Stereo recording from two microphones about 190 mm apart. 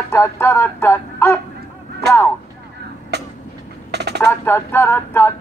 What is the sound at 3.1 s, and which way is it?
Vehicle, 60° right (ahead or behind).